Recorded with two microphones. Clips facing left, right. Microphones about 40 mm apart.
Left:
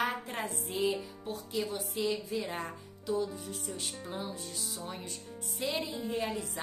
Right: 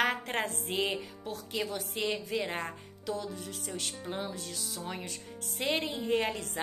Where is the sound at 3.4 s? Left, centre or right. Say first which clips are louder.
Right 1 dB; right.